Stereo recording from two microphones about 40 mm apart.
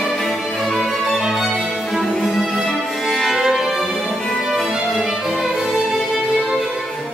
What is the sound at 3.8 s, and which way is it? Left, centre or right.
Music, centre.